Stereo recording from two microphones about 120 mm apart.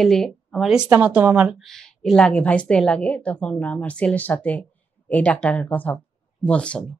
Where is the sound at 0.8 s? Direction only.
15° right (ahead or behind).